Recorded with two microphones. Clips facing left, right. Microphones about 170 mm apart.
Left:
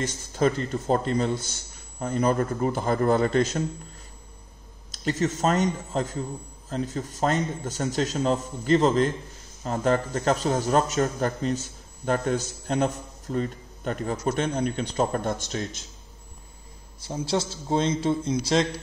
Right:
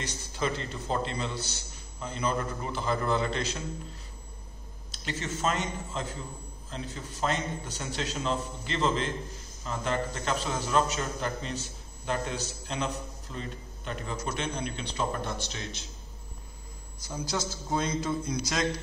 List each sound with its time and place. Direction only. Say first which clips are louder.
0.0 s a man's voice: left 8 dB; 45° left (ahead or behind)
4.9 s a man's voice: left 9 dB; 45° left (ahead or behind)
17.0 s a man's voice: left 6 dB; 25° left (ahead or behind)